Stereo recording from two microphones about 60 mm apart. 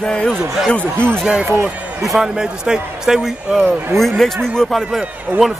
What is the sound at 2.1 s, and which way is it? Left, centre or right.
Speech, centre.